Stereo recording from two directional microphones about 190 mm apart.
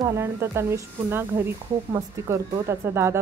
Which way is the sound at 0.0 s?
15° right (ahead or behind).